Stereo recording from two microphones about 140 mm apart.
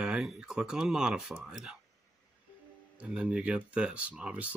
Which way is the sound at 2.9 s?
5° right (ahead or behind).